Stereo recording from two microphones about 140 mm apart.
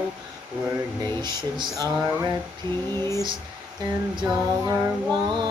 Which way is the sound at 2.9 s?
20° left (ahead or behind).